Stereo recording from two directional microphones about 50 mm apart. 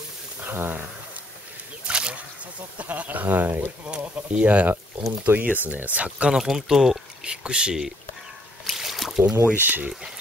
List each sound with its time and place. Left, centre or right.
0.4 s speech: right
1.9 s a sound: right
2.8 s speech: right
3.8 s speech: right
6.3 s speech: centre
8.6 s a sound: centre
9.6 s speech: right